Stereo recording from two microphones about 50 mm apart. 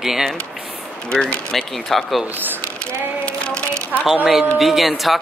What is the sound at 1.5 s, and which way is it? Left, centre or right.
Speech, centre.